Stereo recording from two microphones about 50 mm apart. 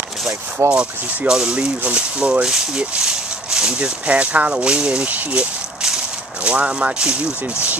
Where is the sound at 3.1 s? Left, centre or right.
Centre.